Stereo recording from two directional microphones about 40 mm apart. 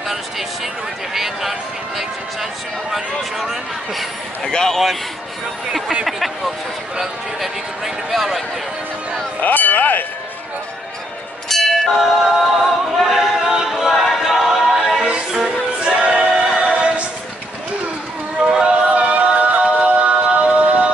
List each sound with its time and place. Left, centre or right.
1.1 s speech: centre
4.5 s speech: centre
6.0 s speech: centre
9.4 s a sound: left
11.4 s music: centre
12.0 s music: centre
15.0 s music: right
18.5 s music: right